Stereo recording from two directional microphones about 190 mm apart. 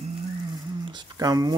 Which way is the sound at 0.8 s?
20° right (ahead or behind).